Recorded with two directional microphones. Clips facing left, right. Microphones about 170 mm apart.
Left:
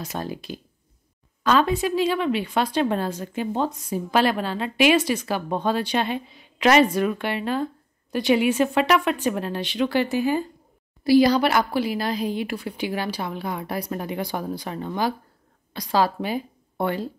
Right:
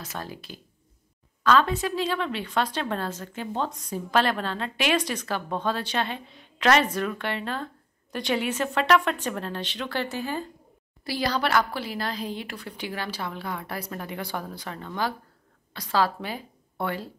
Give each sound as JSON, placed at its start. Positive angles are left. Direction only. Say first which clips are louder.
{"t": 0.0, "sound": "a woman's voice", "louder": "left 6 dB", "side_deg": 15}